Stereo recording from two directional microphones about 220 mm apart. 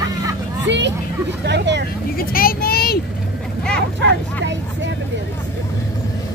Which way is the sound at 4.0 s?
55° right (ahead or behind).